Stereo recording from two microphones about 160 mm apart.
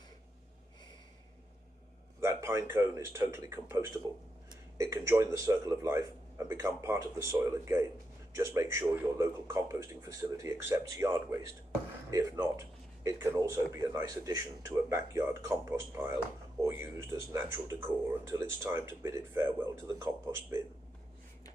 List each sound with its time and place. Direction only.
2.1 s a man's voice: 15° right (ahead or behind)